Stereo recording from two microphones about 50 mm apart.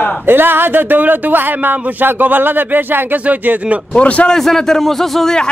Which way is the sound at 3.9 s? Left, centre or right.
Left.